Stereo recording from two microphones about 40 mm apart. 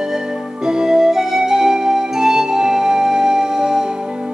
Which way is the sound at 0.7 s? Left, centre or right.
Centre.